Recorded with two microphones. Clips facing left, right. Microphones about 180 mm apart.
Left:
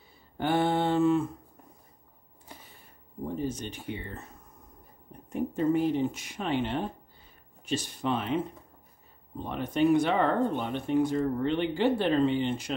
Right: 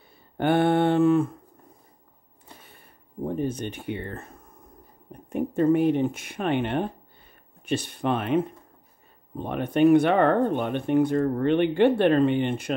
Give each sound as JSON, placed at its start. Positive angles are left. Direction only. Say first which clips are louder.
{"t": 0.4, "sound": "mantra", "louder": "right 5 dB", "side_deg": -60}
{"t": 3.3, "sound": "speech", "louder": "right 5 dB", "side_deg": -60}